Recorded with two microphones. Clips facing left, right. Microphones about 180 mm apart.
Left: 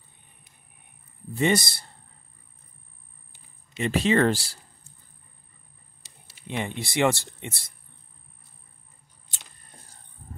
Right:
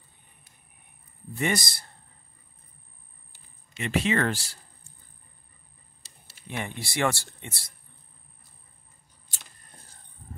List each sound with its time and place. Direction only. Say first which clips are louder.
1.3 s a man's voice: left 5 dB; 25° left (ahead or behind)
3.7 s speech: left 4 dB; 35° left (ahead or behind)
6.0 s speech: left 4 dB; 20° left (ahead or behind)